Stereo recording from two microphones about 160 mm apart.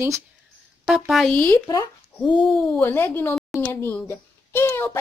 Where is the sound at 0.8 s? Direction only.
Centre (ahead or behind).